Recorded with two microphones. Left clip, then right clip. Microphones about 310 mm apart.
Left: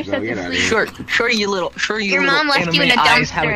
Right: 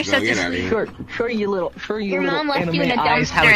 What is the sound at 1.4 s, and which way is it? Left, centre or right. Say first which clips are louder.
A man's voice: left 4 dB; left.